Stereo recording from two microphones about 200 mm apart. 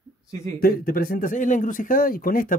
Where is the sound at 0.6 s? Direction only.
50° left (ahead or behind).